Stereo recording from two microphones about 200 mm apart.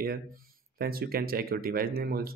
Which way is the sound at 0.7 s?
50° right (ahead or behind).